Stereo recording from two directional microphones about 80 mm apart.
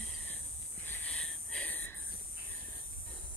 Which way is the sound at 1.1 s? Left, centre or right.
Centre.